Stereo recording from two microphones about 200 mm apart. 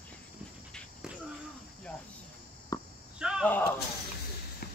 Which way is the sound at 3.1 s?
5° right (ahead or behind).